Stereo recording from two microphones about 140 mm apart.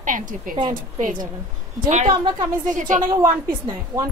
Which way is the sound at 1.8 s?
55° right (ahead or behind).